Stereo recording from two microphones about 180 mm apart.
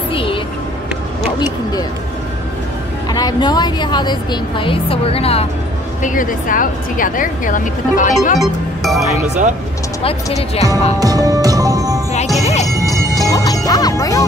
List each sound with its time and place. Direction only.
0.1 s vehicle: 30° left (ahead or behind)
1.4 s speech: 20° left (ahead or behind)
3.1 s speech: 20° left (ahead or behind)
6.0 s a woman's voice: 50° left (ahead or behind)
8.4 s music: centre (ahead or behind)
10.0 s speech: 35° left (ahead or behind)
11.0 s music: 20° right (ahead or behind)
12.4 s speech: 40° left (ahead or behind)
12.7 s music: 20° right (ahead or behind)
13.3 s music: 20° left (ahead or behind)